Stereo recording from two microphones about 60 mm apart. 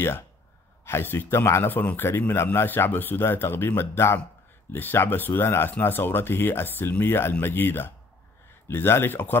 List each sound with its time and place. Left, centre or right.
0.8 s speech: left